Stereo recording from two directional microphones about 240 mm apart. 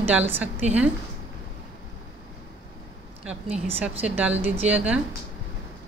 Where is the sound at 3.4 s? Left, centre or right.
Right.